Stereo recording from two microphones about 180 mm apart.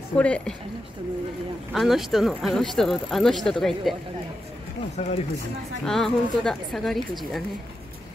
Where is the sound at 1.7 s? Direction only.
Centre (ahead or behind).